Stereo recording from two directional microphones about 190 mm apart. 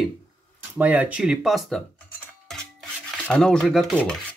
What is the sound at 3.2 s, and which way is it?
Speech, 5° left (ahead or behind).